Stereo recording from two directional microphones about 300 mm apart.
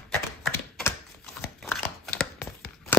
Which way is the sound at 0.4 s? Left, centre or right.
Centre.